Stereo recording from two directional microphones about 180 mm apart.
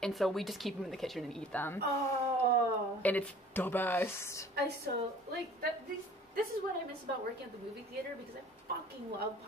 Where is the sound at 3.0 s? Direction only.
10° left (ahead or behind).